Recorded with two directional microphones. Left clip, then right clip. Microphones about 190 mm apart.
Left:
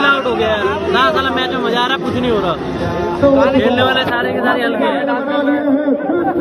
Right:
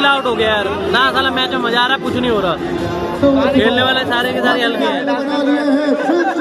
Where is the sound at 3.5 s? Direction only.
20° right (ahead or behind).